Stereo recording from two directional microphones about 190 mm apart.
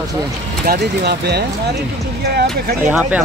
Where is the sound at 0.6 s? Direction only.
55° right (ahead or behind).